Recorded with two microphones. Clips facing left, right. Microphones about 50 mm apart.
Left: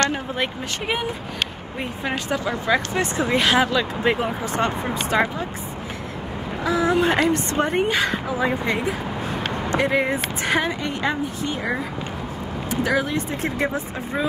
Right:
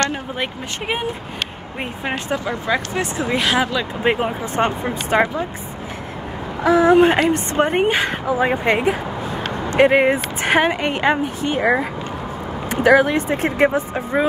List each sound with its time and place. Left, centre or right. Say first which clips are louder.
1.8 s speech: right 2 dB; right
2.4 s speech: even; centre
4.0 s speech: right 2 dB; right
5.1 s a woman's voice: right 4 dB; right
6.6 s a woman's voice: right 8 dB; right
7.1 s a woman's voice: right 3 dB; right